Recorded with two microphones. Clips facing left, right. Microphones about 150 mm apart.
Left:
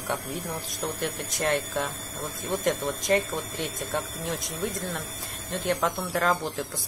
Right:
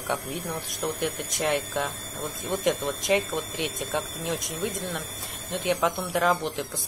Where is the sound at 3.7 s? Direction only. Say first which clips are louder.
Right 1 dB; centre (ahead or behind).